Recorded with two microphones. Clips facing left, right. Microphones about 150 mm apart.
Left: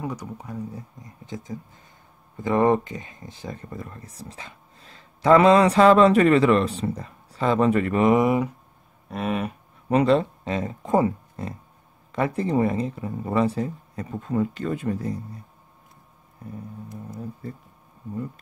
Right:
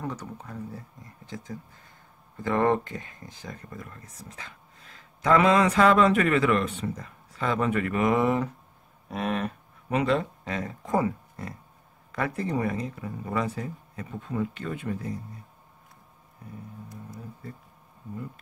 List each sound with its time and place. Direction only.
0.0 s speech: 10° left (ahead or behind); by 8.1 s 30° left (ahead or behind)
8.1 s speech: 15° left (ahead or behind)
9.1 s livestock: 5° left (ahead or behind)
9.8 s speech: 35° left (ahead or behind)